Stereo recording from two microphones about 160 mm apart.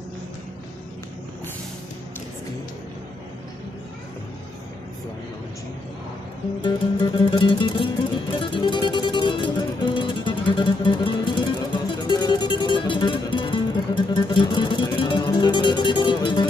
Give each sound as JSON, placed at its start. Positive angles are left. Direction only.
{"t": 6.6, "sound": "music", "side_deg": 30}